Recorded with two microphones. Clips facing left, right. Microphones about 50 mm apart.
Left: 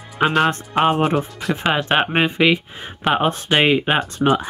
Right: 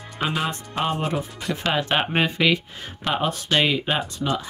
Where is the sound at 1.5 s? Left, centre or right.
Left.